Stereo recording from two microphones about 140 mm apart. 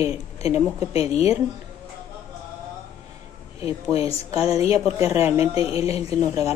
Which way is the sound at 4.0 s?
25° right (ahead or behind).